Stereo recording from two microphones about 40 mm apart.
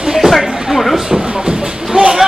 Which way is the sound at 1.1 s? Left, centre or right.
Right.